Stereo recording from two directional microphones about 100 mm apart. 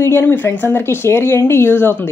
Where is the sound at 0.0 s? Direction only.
20° left (ahead or behind).